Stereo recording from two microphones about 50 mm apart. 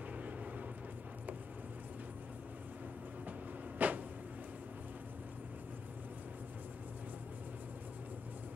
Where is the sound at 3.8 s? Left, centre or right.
Right.